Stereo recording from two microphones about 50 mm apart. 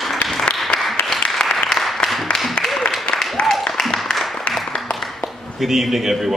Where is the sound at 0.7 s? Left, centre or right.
Centre.